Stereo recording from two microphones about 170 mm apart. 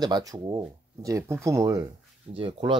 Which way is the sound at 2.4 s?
30° right (ahead or behind).